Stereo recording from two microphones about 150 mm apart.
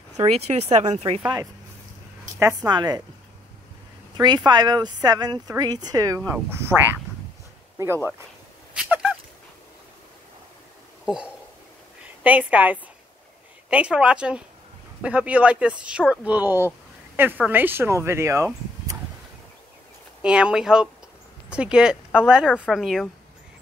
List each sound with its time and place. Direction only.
0.2 s speech: 45° right (ahead or behind)
2.3 s speech: 20° right (ahead or behind)
4.2 s speech: 30° right (ahead or behind)
7.7 s a sound: 15° right (ahead or behind)
12.2 s speech: 10° right (ahead or behind)
20.2 s speech: 5° right (ahead or behind)